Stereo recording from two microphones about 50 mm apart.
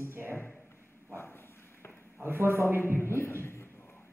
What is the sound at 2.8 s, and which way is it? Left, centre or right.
Speech, left.